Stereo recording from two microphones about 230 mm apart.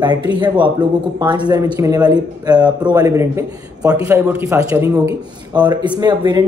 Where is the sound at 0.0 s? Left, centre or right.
Centre.